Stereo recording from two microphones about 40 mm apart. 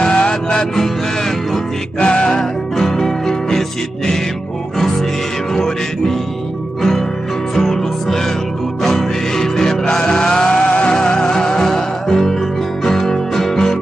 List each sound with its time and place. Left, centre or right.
0.0 s music: centre
2.0 s music: left
2.8 s music: centre